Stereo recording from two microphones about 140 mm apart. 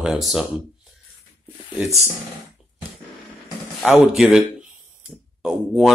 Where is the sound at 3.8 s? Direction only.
Centre (ahead or behind).